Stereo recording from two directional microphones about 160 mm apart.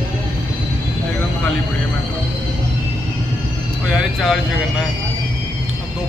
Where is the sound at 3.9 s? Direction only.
5° right (ahead or behind).